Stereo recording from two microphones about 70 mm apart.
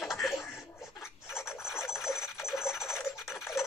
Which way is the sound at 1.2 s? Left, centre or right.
Centre.